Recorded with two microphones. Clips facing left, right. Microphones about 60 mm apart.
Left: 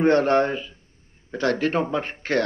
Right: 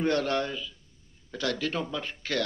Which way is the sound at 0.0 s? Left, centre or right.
Left.